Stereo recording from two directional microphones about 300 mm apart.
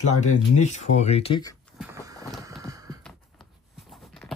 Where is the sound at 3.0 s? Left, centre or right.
Centre.